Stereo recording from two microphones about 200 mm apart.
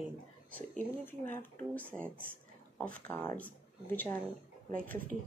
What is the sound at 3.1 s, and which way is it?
Speech, 10° left (ahead or behind).